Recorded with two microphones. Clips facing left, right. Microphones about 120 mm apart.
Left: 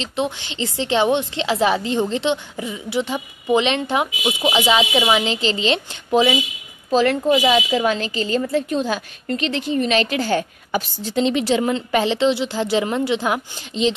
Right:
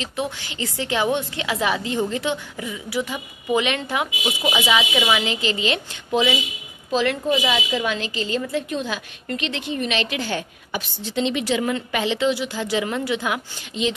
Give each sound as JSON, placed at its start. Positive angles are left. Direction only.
{"t": 0.0, "sound": "a woman's voice", "side_deg": 25}
{"t": 4.5, "sound": "a woman's voice", "side_deg": 30}